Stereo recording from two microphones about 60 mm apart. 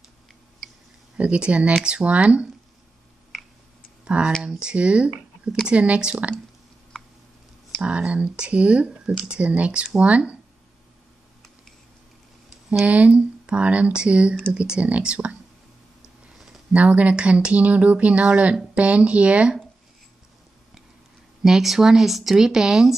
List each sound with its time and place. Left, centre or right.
1.1 s speech: centre
4.0 s tick: centre
4.4 s speech: centre
6.9 s a sound: centre
7.8 s speech: right
12.4 s a sound: centre
12.8 s speech: right
16.7 s speech: right
21.4 s speech: centre